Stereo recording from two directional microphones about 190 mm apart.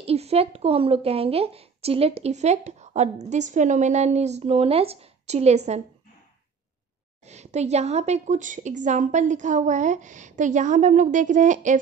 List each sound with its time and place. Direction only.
0.0 s a woman's voice: 35° right (ahead or behind)
7.2 s a woman's voice: 35° right (ahead or behind)